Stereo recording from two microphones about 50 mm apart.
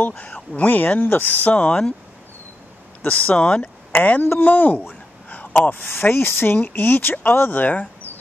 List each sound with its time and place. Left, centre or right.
0.6 s speech: left
3.0 s speech: left
4.0 s speech: left
4.4 s a sound: left
5.9 s speech: left